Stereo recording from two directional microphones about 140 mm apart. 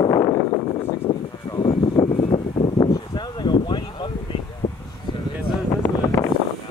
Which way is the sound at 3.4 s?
30° left (ahead or behind).